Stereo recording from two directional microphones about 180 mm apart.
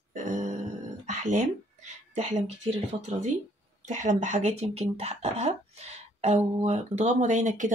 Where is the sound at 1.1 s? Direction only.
45° right (ahead or behind).